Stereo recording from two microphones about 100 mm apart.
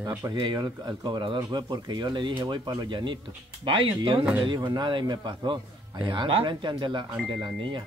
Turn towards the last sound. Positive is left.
turn(degrees=-55)  # may be behind; listen again after turning